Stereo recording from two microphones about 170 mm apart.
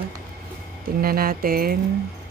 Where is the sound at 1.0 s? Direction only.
60° right (ahead or behind).